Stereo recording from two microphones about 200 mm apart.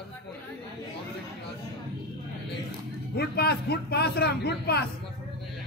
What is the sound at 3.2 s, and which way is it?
A man's voice, 55° left (ahead or behind).